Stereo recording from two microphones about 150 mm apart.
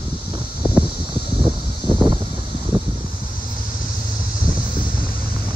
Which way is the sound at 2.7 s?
30° right (ahead or behind).